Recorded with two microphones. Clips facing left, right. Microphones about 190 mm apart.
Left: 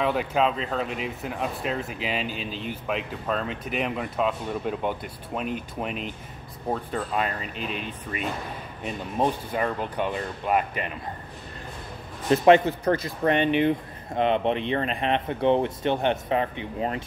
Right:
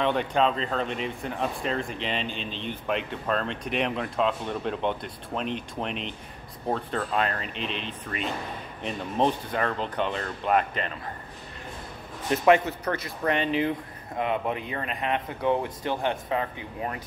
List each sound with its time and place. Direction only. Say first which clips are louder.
0.0 s speech: even; 5° left (ahead or behind)
12.3 s speech: left 4 dB; 30° left (ahead or behind)